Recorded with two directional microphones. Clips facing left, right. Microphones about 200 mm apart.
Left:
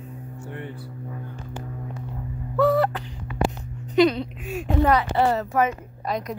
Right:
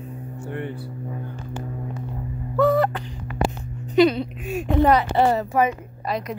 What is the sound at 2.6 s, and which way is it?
Speech, centre (ahead or behind).